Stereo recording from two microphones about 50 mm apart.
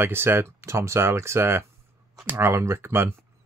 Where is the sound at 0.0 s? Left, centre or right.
Right.